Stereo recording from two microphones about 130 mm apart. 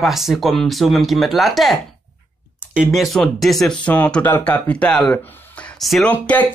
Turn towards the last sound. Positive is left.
turn(degrees=10)  # may be behind; listen again after turning